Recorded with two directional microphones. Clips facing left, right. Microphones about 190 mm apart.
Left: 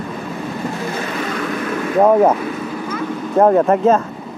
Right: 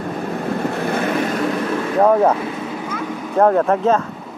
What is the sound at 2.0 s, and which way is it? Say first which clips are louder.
Speech: left 2 dB; 10° left (ahead or behind).